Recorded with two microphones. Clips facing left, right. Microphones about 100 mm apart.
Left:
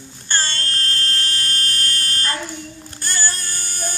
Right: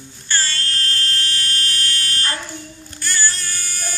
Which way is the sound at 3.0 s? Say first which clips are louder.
Right 2 dB; 45° left (ahead or behind).